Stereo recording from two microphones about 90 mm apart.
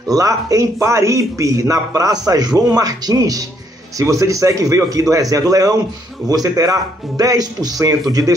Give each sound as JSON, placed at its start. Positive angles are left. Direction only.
{"t": 0.1, "sound": "a man's voice", "side_deg": -40}